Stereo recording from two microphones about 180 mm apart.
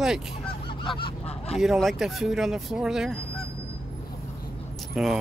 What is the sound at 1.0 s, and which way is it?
Goose, 35° left (ahead or behind).